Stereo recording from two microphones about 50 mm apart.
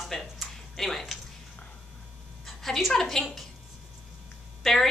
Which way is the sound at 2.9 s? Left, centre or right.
Centre.